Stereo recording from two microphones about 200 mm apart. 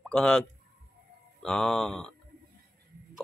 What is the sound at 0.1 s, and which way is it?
Speech, 5° left (ahead or behind).